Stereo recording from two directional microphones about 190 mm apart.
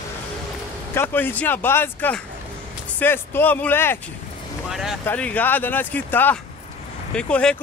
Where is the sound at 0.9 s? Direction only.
10° left (ahead or behind).